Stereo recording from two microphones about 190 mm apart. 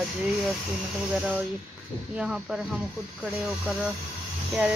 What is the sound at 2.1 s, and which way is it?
Speech, 5° right (ahead or behind).